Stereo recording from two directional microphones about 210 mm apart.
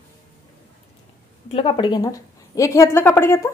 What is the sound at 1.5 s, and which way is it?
A woman's voice, 25° left (ahead or behind).